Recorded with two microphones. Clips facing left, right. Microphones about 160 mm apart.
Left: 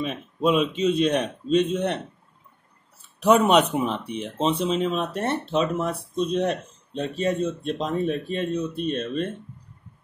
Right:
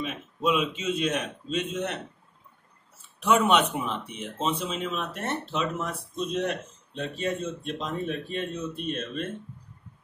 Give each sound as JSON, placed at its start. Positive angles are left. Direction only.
{"t": 0.0, "sound": "speech", "side_deg": 35}
{"t": 3.2, "sound": "speech", "side_deg": 40}